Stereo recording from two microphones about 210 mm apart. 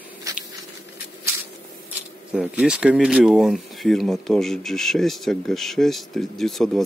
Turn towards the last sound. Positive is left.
turn(degrees=0)  # may be behind; listen again after turning